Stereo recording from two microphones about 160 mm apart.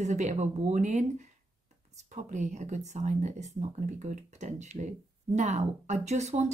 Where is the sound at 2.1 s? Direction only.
50° right (ahead or behind).